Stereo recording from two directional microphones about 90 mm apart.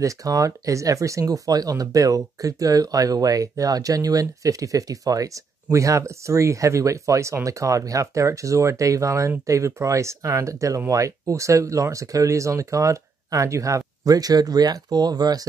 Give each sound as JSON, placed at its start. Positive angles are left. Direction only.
{"t": 0.0, "sound": "speech", "side_deg": -40}